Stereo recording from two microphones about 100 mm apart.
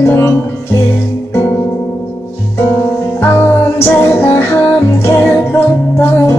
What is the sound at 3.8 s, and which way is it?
Music, 25° left (ahead or behind).